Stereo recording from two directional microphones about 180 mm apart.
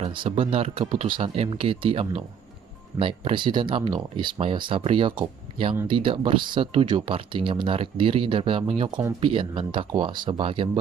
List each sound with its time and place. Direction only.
0.0 s speech: 30° right (ahead or behind)